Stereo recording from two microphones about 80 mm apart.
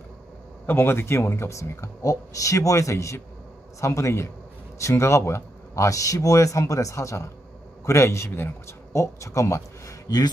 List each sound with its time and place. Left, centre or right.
0.7 s speech: left